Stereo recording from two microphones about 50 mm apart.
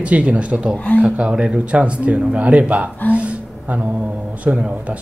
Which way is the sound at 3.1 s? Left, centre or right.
Right.